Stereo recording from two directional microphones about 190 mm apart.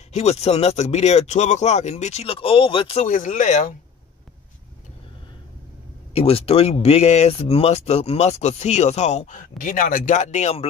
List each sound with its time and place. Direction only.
0.1 s speech: 35° left (ahead or behind)
3.1 s speech: 40° left (ahead or behind)
6.1 s speech: 30° left (ahead or behind)